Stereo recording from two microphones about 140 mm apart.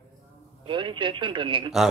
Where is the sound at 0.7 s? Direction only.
35° right (ahead or behind).